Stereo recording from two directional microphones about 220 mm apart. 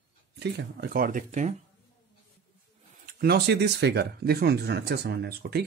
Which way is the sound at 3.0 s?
45° right (ahead or behind).